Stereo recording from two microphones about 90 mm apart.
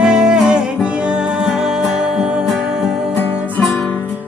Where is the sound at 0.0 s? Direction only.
10° right (ahead or behind).